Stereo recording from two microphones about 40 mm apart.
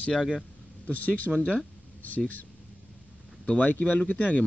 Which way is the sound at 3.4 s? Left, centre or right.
Left.